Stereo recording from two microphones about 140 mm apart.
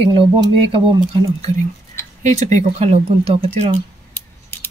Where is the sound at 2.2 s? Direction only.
55° right (ahead or behind).